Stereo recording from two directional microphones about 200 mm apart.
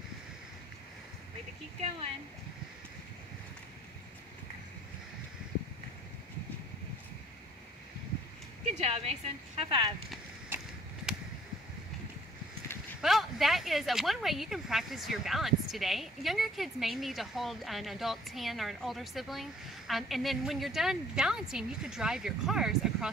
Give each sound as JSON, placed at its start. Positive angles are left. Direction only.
{"t": 8.6, "sound": "speech", "side_deg": -30}
{"t": 13.0, "sound": "speech", "side_deg": 0}